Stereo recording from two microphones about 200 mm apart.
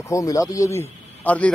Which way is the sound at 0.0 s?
15° left (ahead or behind).